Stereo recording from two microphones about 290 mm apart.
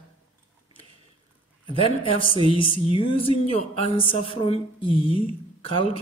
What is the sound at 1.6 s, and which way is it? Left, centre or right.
A man's voice, centre.